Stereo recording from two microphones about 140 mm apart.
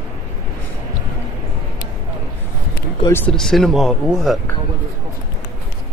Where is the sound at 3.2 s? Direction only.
5° left (ahead or behind).